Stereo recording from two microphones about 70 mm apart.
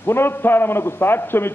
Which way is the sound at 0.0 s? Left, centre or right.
Left.